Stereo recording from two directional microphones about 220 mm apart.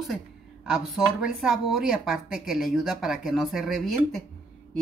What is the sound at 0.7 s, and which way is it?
Speech, 5° right (ahead or behind).